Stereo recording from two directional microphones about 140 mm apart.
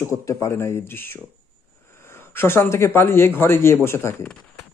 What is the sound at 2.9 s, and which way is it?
Speech, 15° left (ahead or behind).